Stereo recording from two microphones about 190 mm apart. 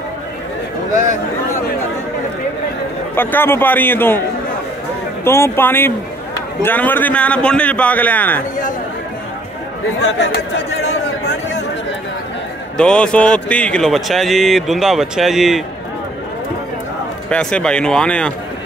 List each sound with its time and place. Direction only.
3.2 s a man's voice: 10° left (ahead or behind)
5.2 s a man's voice: 10° left (ahead or behind)
10.0 s speech: 65° left (ahead or behind)
12.7 s speech: 5° left (ahead or behind)
17.3 s speech: 5° left (ahead or behind)